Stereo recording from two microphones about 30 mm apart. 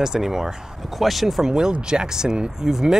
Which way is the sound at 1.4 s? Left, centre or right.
Right.